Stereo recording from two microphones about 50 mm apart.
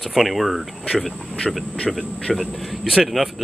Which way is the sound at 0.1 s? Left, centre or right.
Centre.